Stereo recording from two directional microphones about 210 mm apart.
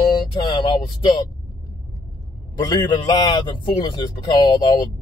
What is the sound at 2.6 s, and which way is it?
Speech, 20° left (ahead or behind).